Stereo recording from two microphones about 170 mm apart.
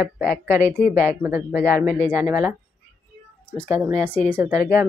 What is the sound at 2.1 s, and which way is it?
Speech, 20° right (ahead or behind).